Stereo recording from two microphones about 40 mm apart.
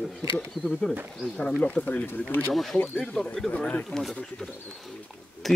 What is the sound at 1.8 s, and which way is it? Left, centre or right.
Speech, left.